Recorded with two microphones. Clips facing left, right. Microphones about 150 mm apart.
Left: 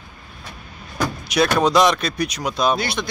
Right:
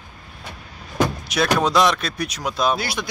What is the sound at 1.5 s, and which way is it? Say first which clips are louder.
Speech: left 1 dB; centre (ahead or behind).